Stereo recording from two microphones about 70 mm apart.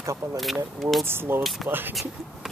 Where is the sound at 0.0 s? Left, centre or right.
Right.